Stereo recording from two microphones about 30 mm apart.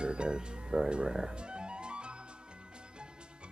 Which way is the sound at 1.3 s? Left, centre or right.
Right.